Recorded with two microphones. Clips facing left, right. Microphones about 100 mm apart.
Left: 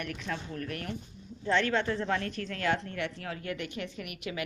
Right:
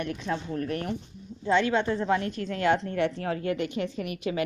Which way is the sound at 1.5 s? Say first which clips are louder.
Right 4 dB; 15° right (ahead or behind).